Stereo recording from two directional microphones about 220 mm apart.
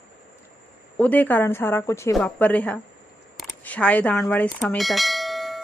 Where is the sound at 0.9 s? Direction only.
5° left (ahead or behind).